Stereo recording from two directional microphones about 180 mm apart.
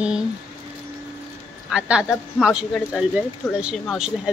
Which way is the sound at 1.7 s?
5° right (ahead or behind).